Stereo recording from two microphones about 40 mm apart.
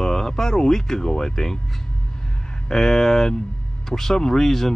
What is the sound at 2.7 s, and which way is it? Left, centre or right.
Speech, centre.